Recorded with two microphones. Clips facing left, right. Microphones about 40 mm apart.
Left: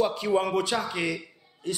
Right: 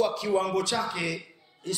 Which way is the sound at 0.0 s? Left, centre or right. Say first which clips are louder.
Left 1 dB; centre.